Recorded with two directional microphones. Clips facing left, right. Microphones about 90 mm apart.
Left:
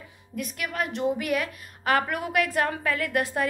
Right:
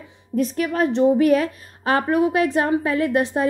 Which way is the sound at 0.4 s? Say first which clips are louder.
Right 10 dB; 30° right (ahead or behind).